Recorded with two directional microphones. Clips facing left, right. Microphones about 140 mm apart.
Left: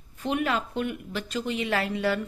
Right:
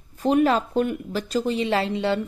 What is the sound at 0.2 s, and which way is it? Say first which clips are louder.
Speech: right 8 dB; 35° right (ahead or behind).